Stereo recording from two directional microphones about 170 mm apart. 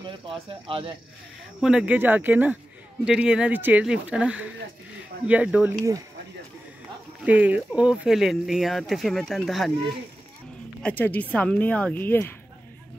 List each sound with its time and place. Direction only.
0.3 s speech: 30° right (ahead or behind)
1.6 s speech: 5° right (ahead or behind)
7.2 s speech: 10° right (ahead or behind)
10.8 s speech: 10° left (ahead or behind)